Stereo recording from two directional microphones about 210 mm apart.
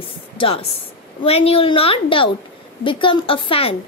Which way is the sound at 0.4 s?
25° left (ahead or behind).